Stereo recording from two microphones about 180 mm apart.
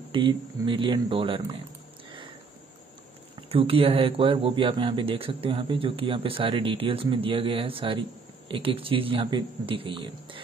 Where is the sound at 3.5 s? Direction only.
30° right (ahead or behind).